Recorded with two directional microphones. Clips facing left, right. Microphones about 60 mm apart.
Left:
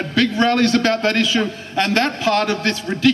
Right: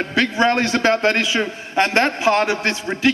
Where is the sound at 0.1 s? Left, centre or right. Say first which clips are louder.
Left 1 dB; right.